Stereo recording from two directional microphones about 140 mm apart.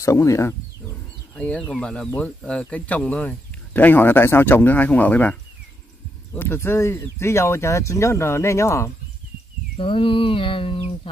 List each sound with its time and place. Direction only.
0.0 s speech: 20° left (ahead or behind)
1.3 s speech: 10° left (ahead or behind)
9.8 s a sound: 40° left (ahead or behind)